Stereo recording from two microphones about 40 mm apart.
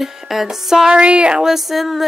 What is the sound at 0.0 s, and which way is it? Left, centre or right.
Music, centre.